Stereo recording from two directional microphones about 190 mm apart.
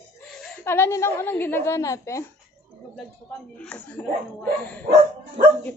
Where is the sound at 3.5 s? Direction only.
10° left (ahead or behind).